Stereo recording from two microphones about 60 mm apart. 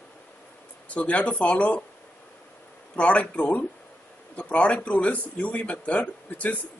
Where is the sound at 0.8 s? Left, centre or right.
Left.